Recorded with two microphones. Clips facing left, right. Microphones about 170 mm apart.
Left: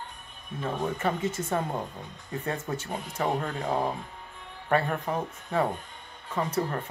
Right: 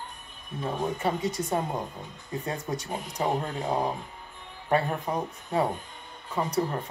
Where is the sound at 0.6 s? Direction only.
10° right (ahead or behind).